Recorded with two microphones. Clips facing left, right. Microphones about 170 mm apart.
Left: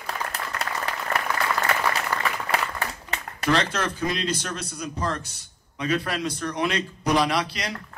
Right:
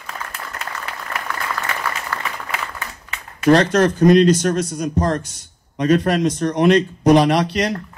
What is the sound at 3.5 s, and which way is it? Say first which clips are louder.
Speech: right 11 dB; 50° right (ahead or behind).